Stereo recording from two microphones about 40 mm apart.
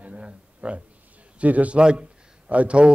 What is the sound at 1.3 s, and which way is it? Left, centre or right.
A man's voice, right.